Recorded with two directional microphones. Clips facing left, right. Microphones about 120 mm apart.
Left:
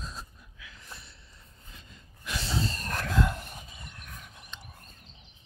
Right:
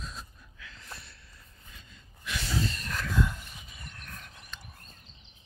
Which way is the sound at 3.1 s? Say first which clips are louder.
Left 2 dB; 65° left (ahead or behind).